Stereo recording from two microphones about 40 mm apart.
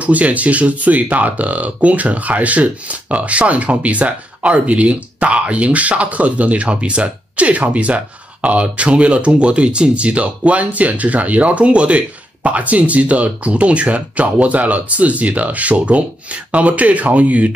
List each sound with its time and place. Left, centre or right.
0.0 s speech: right